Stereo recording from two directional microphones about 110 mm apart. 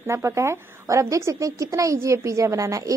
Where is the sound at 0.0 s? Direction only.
25° right (ahead or behind).